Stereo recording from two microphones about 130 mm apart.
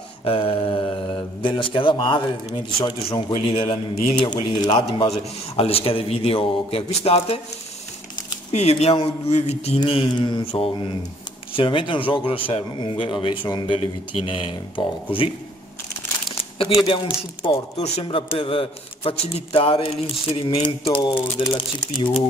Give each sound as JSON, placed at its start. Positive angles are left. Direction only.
{"t": 0.2, "sound": "a man's voice", "side_deg": 45}
{"t": 8.5, "sound": "a man's voice", "side_deg": 55}
{"t": 9.8, "sound": "speech", "side_deg": 40}
{"t": 10.4, "sound": "a man's voice", "side_deg": 45}
{"t": 16.3, "sound": "crumpling", "side_deg": 45}
{"t": 17.5, "sound": "a man's voice", "side_deg": 55}